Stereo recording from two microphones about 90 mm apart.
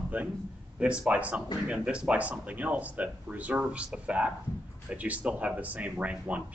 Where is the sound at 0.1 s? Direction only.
15° right (ahead or behind).